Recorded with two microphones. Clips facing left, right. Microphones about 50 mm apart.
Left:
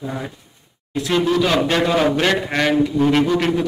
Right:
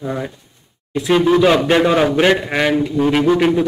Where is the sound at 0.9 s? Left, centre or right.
Centre.